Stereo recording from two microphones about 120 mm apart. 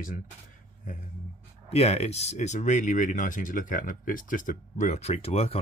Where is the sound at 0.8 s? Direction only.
90° left.